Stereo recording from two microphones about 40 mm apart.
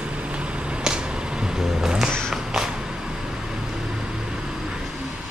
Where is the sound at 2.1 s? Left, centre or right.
Centre.